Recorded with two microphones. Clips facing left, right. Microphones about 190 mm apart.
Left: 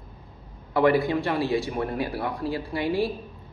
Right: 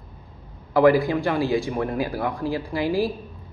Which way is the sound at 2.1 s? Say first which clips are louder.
Right 3 dB; 30° left (ahead or behind).